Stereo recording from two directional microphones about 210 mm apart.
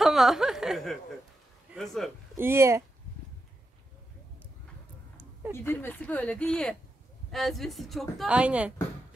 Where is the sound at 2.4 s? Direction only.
10° right (ahead or behind).